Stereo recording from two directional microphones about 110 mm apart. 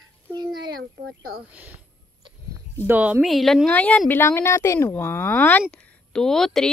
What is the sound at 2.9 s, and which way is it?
Speech, 15° right (ahead or behind).